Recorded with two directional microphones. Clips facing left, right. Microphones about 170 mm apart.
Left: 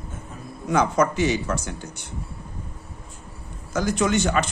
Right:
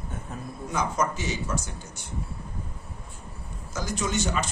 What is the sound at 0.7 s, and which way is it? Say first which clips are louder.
A man's voice: left 7 dB; 65° left (ahead or behind).